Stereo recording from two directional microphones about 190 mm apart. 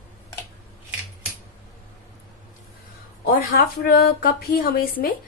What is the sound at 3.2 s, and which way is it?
A woman's voice, 50° left (ahead or behind).